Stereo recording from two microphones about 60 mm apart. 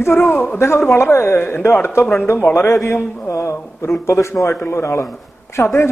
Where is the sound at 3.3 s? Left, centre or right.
Left.